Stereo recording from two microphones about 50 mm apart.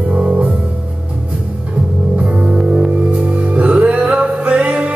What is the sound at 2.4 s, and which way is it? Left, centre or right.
Music, right.